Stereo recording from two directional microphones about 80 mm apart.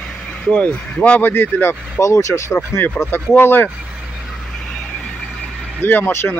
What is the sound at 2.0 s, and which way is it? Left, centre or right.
Speech, left.